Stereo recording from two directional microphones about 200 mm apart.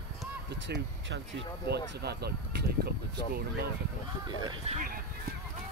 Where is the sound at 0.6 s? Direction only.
60° right (ahead or behind).